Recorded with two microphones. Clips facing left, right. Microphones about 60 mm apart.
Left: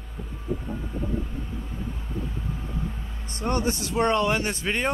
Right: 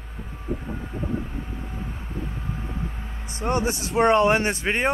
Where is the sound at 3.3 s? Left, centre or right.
Centre.